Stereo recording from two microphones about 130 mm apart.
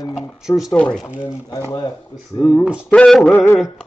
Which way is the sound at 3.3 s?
15° left (ahead or behind).